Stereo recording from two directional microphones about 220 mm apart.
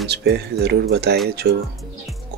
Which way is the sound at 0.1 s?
50° right (ahead or behind).